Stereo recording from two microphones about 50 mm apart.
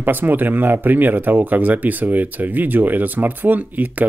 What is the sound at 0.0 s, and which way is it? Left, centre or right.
Speech, right.